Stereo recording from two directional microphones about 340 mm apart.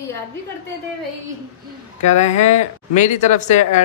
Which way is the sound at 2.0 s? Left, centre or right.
Centre.